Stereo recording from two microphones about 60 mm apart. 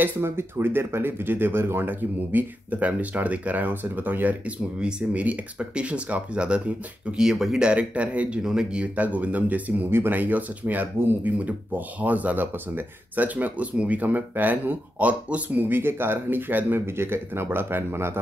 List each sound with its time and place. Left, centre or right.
0.0 s speech: right
16.8 s speech: right